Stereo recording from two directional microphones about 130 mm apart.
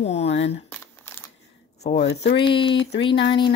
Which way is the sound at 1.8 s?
55° left (ahead or behind).